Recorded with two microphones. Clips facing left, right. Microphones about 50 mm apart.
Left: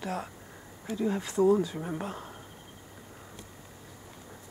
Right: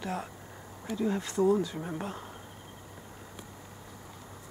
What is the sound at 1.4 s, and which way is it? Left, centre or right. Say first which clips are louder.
Speech: left 2 dB; left.